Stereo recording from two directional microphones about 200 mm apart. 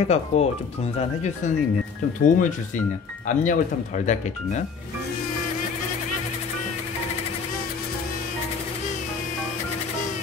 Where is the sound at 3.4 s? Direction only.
35° left (ahead or behind).